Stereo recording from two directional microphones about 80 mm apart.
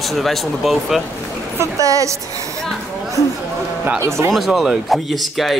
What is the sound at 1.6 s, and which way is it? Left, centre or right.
Speech, right.